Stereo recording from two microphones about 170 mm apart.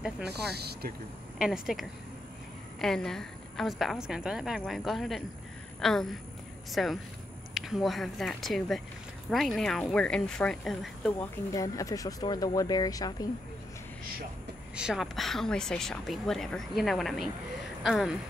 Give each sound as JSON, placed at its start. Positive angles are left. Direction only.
{"t": 0.5, "sound": "speech", "side_deg": -70}
{"t": 1.4, "sound": "a woman's voice", "side_deg": -5}
{"t": 11.5, "sound": "speech", "side_deg": 20}
{"t": 14.8, "sound": "speech", "side_deg": -5}